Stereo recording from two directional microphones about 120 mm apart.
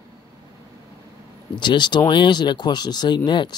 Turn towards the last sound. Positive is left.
turn(degrees=40)  # may be behind; listen again after turning